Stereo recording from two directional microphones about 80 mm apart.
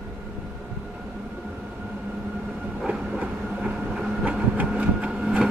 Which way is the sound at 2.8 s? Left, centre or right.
Centre.